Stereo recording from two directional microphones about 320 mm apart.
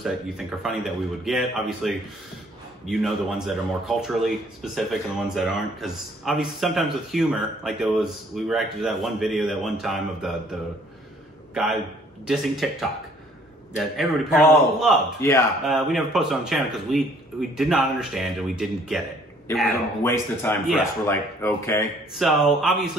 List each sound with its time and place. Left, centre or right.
0.0 s speech: centre
5.3 s speech: centre
11.5 s a man's voice: centre